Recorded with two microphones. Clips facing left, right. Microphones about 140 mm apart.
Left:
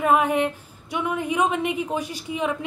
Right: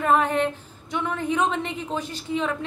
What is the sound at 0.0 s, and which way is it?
A woman's voice, 10° left (ahead or behind).